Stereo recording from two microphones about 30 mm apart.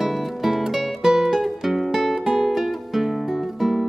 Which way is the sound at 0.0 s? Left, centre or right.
Centre.